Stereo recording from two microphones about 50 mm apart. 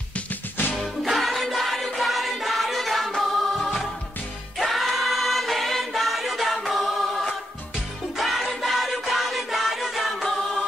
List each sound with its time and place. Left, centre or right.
0.1 s music: left
1.0 s choir: centre
3.2 s music: centre
4.6 s choir: centre
8.2 s music: centre